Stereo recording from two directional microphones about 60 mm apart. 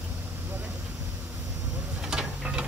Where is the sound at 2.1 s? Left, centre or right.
Centre.